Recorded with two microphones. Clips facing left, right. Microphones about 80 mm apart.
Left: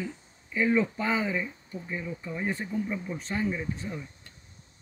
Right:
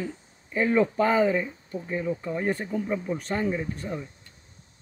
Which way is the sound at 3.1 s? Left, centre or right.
Right.